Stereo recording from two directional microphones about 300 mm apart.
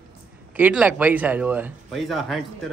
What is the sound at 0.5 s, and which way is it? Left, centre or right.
A man's voice, centre.